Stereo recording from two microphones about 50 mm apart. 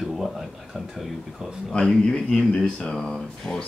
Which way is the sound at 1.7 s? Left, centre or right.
Centre.